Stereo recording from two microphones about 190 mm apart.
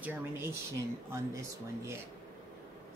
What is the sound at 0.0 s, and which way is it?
Speech, 10° right (ahead or behind).